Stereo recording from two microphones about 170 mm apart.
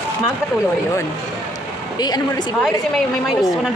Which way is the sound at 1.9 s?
25° left (ahead or behind).